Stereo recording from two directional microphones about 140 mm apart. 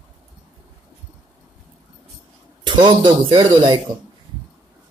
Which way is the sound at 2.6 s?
35° right (ahead or behind).